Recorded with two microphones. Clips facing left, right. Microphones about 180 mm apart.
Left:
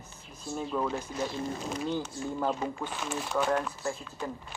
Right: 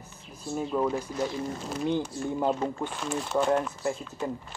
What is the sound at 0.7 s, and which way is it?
Speech, 20° right (ahead or behind).